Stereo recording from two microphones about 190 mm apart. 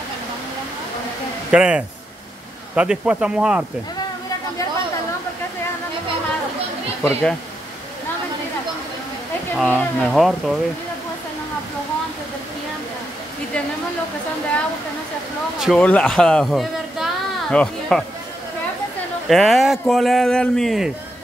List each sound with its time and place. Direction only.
1.5 s speech: 5° right (ahead or behind)
7.0 s speech: 5° left (ahead or behind)
9.6 s speech: 5° left (ahead or behind)
15.6 s speech: 5° left (ahead or behind)
19.2 s speech: centre (ahead or behind)